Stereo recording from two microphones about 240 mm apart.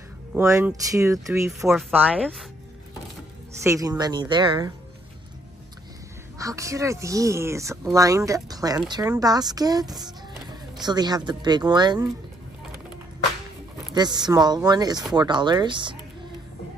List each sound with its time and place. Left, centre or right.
0.3 s speech: centre
3.6 s speech: centre
6.3 s speech: centre
13.9 s speech: centre